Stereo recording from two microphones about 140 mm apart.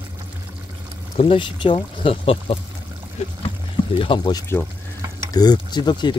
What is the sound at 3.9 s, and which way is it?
Speech, 35° left (ahead or behind).